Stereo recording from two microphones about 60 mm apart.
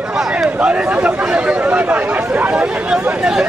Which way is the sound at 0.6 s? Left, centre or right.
Centre.